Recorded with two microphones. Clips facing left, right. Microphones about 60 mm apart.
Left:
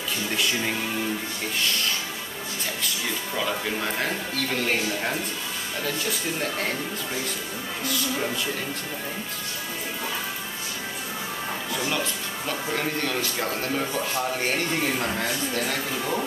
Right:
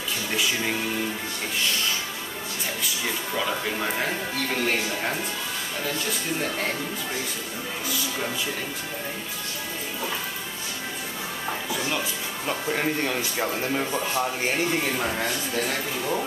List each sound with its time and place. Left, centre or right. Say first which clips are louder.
3.3 s speech: even; centre
11.7 s speech: left 1 dB; centre
12.4 s speech: right 2 dB; centre